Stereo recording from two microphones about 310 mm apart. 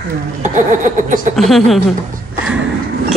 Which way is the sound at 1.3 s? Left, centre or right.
Centre.